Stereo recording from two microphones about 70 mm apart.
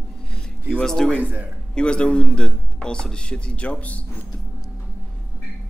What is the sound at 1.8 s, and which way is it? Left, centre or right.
A man's voice, centre.